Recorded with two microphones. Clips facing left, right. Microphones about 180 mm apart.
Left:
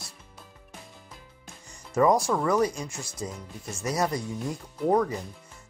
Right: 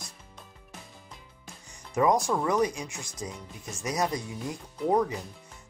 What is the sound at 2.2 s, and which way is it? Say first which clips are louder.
Speech: left 2 dB; 15° right (ahead or behind).